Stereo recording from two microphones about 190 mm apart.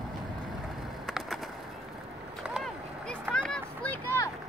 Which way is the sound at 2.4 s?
Centre (ahead or behind).